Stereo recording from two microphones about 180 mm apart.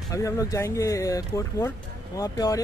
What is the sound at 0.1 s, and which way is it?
Speech, 20° left (ahead or behind).